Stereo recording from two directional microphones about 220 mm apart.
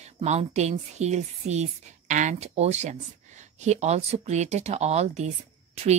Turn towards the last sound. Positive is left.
turn(degrees=-30)  # may be behind; listen again after turning